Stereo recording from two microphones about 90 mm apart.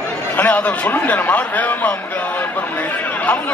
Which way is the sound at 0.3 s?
20° left (ahead or behind).